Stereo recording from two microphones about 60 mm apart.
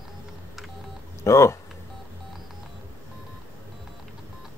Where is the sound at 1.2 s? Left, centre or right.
Left.